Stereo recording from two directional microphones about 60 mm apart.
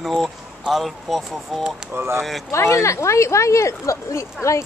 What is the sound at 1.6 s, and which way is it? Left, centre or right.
Speech, centre.